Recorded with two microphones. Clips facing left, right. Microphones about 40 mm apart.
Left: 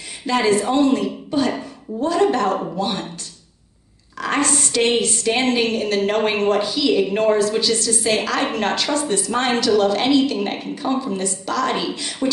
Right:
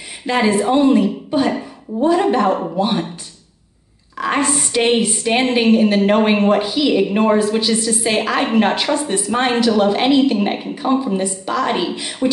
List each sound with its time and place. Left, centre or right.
0.3 s speech: centre
4.2 s speech: centre